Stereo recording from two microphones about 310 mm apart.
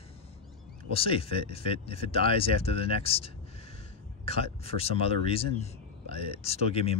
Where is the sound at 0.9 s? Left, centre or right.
Centre.